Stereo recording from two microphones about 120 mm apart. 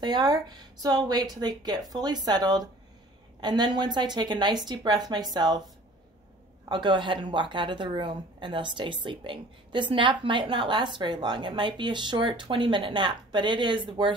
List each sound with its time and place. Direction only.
0.0 s a woman's voice: 35° right (ahead or behind)
6.7 s a woman's voice: 40° right (ahead or behind)